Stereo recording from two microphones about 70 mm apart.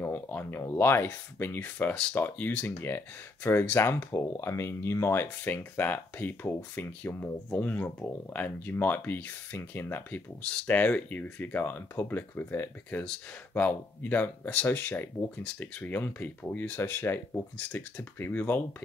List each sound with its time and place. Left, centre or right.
0.0 s speech: left